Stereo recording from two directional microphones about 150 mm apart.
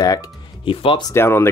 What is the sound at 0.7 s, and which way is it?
Speech, 35° left (ahead or behind).